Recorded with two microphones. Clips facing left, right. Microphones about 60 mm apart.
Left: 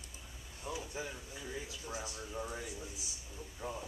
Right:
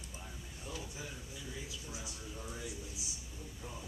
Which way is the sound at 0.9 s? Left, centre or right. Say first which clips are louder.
Left 4 dB; left.